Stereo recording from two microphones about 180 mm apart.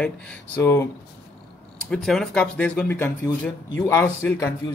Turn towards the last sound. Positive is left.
turn(degrees=10)  # may be behind; listen again after turning